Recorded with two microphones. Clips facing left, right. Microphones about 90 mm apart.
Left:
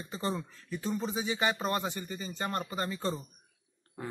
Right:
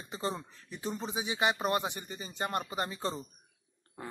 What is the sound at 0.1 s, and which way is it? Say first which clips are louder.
Speech: left 1 dB; 15° right (ahead or behind).